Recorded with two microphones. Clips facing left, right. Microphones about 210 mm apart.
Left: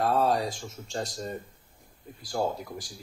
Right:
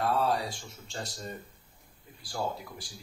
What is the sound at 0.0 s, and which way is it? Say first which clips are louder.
A man's voice: left 3 dB; 45° left (ahead or behind).